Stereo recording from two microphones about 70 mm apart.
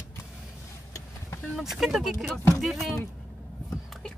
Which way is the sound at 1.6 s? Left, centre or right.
Centre.